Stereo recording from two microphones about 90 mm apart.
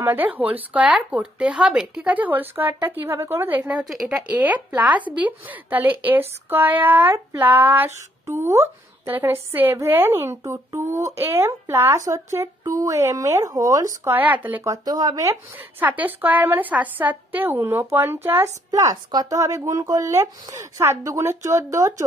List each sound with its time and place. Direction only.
0.0 s speech: 20° right (ahead or behind)
3.6 s a woman's voice: 5° right (ahead or behind)
4.3 s speech: 20° right (ahead or behind); by 13.8 s 40° right (ahead or behind)
14.0 s speech: 20° right (ahead or behind)
14.6 s speech: 45° right (ahead or behind)
15.8 s speech: 20° right (ahead or behind)
18.7 s speech: 40° right (ahead or behind)